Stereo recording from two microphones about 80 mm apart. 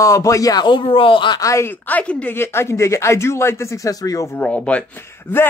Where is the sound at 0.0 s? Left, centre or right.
Left.